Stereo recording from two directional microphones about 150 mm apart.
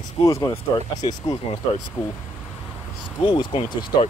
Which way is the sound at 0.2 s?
20° left (ahead or behind).